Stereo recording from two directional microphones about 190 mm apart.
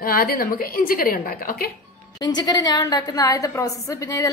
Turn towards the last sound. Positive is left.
turn(degrees=15)  # may be behind; listen again after turning